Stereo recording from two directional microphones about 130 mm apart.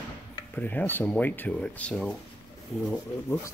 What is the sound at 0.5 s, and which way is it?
Speech, 15° left (ahead or behind).